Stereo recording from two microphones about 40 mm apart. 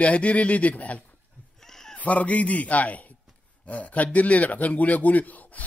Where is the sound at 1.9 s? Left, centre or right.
Left.